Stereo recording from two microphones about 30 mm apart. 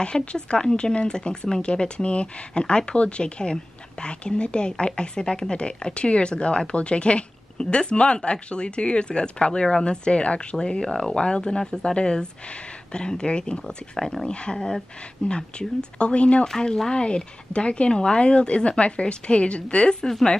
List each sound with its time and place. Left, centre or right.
0.0 s speech: left
10.6 s speech: left
14.2 s speech: left
16.4 s speech: left
16.9 s speech: left